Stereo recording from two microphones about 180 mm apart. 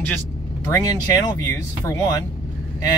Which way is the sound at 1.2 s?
20° left (ahead or behind).